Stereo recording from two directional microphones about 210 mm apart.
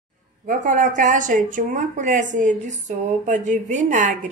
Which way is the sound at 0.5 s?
40° right (ahead or behind).